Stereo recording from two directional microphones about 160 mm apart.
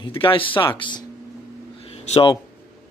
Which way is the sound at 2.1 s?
35° left (ahead or behind).